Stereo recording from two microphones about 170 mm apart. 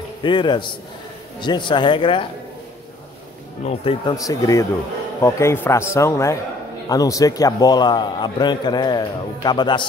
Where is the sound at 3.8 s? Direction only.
30° left (ahead or behind).